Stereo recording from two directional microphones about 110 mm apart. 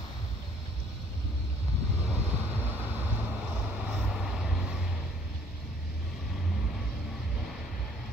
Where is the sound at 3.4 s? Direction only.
10° right (ahead or behind).